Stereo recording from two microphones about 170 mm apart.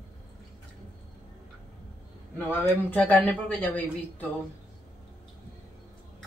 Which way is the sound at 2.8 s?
10° left (ahead or behind).